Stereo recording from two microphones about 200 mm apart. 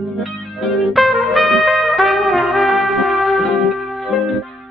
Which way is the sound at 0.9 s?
Centre (ahead or behind).